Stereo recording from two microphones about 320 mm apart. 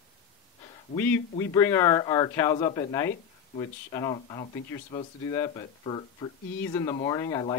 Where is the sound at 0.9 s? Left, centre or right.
Centre.